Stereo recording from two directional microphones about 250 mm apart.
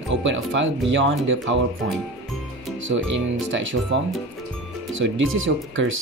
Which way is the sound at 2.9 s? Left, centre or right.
Right.